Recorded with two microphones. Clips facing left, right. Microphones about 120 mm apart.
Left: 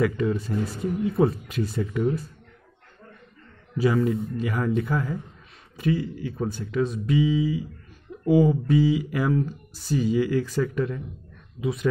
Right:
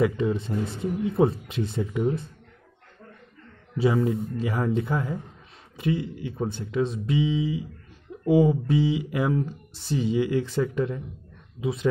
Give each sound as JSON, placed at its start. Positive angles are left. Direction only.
{"t": 0.0, "sound": "speech", "side_deg": -25}
{"t": 3.7, "sound": "speech", "side_deg": -25}